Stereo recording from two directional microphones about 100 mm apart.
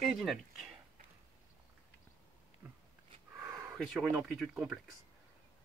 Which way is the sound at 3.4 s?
10° right (ahead or behind).